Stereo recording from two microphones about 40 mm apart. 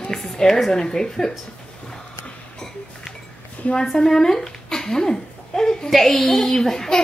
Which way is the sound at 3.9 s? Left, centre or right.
Centre.